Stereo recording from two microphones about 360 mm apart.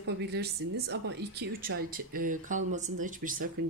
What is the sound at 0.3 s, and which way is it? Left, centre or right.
Speech, right.